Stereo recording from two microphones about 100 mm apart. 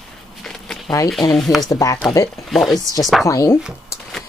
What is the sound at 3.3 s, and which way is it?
Speech, 35° left (ahead or behind).